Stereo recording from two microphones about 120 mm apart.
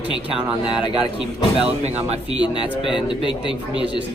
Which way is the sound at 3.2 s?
45° left (ahead or behind).